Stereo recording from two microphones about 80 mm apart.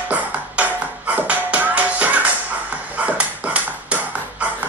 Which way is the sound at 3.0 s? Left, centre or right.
Centre.